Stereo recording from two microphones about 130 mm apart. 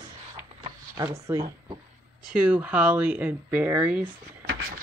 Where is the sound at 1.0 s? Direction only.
25° right (ahead or behind).